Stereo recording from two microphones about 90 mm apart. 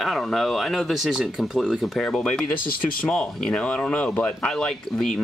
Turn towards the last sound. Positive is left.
turn(degrees=10)  # may be behind; listen again after turning